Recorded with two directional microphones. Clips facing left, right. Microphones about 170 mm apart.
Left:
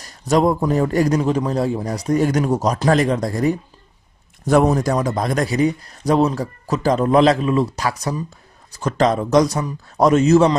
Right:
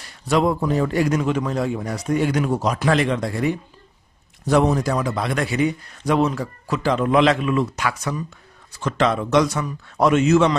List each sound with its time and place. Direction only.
0.0 s a man's voice: 40° left (ahead or behind)